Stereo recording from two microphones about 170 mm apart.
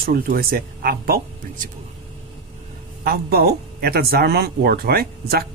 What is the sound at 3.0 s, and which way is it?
Speech, 65° right (ahead or behind).